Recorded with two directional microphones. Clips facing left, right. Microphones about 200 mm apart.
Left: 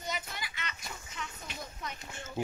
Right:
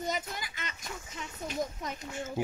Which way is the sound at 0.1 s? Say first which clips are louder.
Right 4 dB; 45° right (ahead or behind).